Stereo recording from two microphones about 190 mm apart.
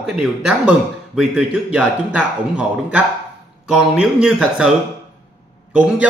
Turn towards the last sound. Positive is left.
turn(degrees=-5)  # may be behind; listen again after turning